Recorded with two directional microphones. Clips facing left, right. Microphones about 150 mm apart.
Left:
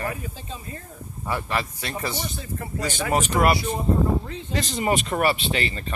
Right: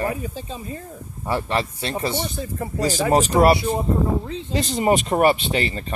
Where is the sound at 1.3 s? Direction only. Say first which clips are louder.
Right 4 dB; 25° right (ahead or behind).